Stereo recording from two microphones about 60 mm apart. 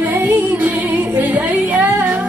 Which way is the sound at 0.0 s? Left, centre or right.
Right.